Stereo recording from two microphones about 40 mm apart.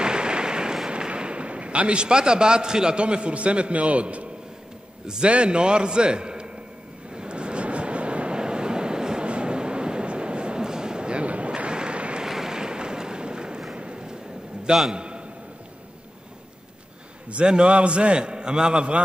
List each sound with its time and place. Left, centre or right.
0.0 s a sound: right
0.8 s a man's voice: right
5.0 s a man's voice: centre
7.2 s vehicle: right
12.2 s boat: centre
13.7 s a sound: right
17.3 s a man's voice: right